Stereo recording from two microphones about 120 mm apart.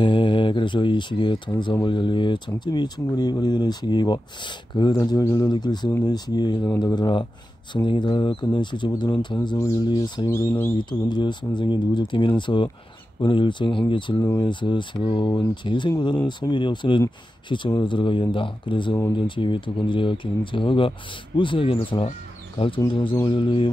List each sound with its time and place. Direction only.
0.0 s mantra: 45° left (ahead or behind)
1.6 s speech: 40° left (ahead or behind)
23.2 s speech: 45° left (ahead or behind)